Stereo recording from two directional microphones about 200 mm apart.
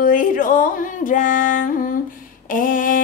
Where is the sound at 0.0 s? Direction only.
40° left (ahead or behind).